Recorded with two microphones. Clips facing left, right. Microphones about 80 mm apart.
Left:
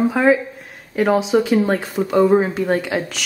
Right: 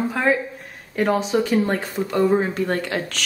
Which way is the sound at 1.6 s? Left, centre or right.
Centre.